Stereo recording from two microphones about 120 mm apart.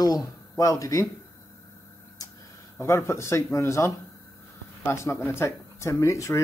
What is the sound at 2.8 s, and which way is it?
Speech, 25° left (ahead or behind).